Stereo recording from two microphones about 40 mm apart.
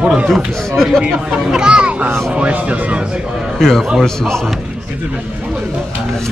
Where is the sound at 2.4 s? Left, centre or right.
Right.